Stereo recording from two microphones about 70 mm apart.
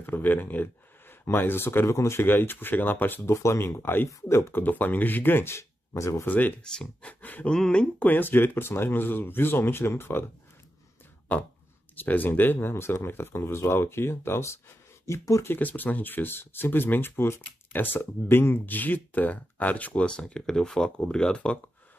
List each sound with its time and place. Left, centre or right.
0.0 s speech: left
3.3 s speech: left
6.2 s speech: left
6.6 s speech: centre
7.1 s speech: left
7.5 s speech: centre
8.1 s speech: left
11.3 s speech: left
15.4 s speech: left